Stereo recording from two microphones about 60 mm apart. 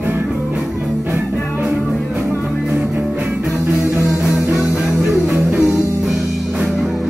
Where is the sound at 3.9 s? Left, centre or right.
Right.